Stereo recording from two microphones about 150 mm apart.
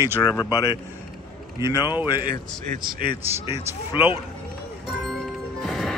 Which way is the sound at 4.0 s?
35° left (ahead or behind).